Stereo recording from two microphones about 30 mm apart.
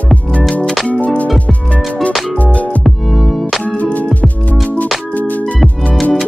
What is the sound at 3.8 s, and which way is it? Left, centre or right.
Music, left.